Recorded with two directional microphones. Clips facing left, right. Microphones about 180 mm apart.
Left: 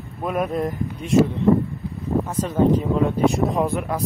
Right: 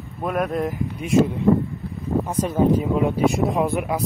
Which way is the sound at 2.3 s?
15° right (ahead or behind).